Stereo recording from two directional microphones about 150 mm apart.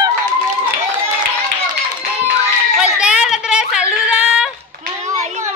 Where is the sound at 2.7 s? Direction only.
5° right (ahead or behind).